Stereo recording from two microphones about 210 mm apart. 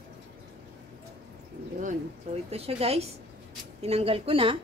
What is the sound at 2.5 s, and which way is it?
Speech, 30° right (ahead or behind).